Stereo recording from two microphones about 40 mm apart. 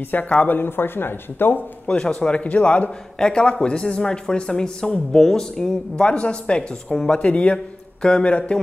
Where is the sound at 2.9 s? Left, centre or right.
Left.